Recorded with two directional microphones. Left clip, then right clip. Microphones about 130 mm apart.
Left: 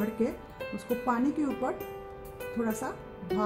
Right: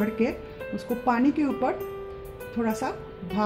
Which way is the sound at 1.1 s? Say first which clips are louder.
Right 7 dB; 10° right (ahead or behind).